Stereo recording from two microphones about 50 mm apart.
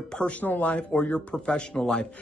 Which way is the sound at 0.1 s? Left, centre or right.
Left.